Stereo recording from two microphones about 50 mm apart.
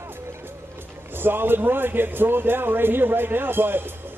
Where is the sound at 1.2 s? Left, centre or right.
Right.